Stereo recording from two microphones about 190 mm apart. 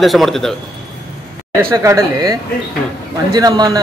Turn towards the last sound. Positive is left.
turn(degrees=-20)  # may be behind; listen again after turning